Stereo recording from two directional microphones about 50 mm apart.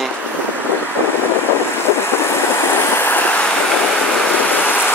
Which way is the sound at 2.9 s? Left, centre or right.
Left.